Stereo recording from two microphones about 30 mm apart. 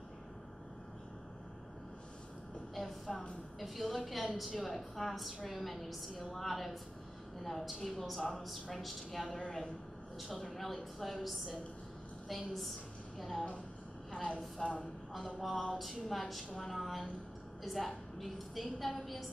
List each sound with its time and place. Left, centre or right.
2.7 s a woman's voice: centre
8.3 s a woman's voice: centre
12.3 s a woman's voice: centre
14.2 s a woman's voice: left
15.1 s a woman's voice: centre